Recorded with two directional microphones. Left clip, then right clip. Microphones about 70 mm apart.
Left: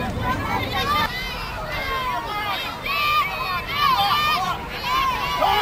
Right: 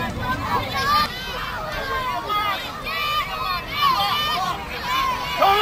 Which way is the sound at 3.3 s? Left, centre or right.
Centre.